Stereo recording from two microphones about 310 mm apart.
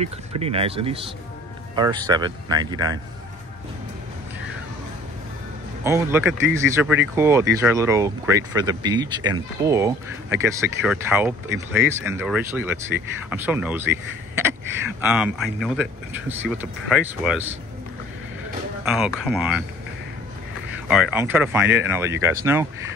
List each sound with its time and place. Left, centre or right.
0.4 s speech: centre
5.9 s speech: centre
15.0 s speech: centre
18.9 s speech: centre
20.9 s speech: centre